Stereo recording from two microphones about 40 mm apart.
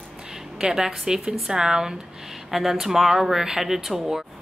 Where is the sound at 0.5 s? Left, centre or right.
Centre.